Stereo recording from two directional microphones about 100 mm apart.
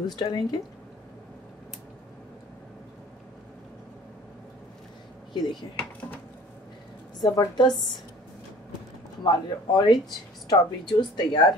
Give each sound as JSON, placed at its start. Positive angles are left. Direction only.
{"t": 0.0, "sound": "speech", "side_deg": 45}
{"t": 5.3, "sound": "speech", "side_deg": 45}
{"t": 5.8, "sound": "speech", "side_deg": 10}
{"t": 7.2, "sound": "speech", "side_deg": 45}
{"t": 9.2, "sound": "speech", "side_deg": 45}